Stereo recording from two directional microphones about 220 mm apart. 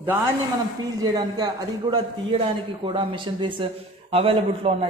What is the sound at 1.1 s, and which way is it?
A man's voice, 20° right (ahead or behind).